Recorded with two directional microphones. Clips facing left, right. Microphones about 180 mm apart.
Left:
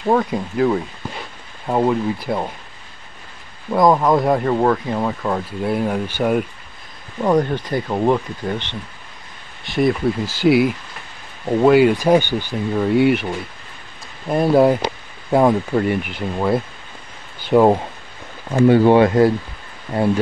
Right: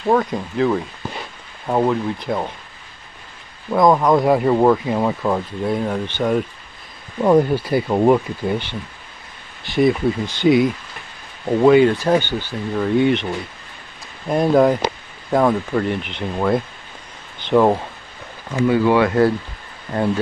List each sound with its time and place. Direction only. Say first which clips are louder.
0.1 s speech: even; 5° left (ahead or behind)
3.7 s speech: even; centre (ahead or behind)
5.6 s speech: left 1 dB; 5° left (ahead or behind)
7.2 s speech: right 3 dB; 5° right (ahead or behind); by 17.8 s 15° left (ahead or behind)
18.7 s speech: left 3 dB; 30° left (ahead or behind)
19.9 s speech: left 1 dB; 15° left (ahead or behind)